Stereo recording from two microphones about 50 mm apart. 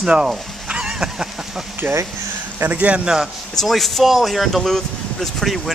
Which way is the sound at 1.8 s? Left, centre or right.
Right.